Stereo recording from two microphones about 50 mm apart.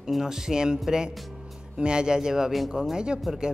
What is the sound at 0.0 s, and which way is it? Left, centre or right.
Speech, centre.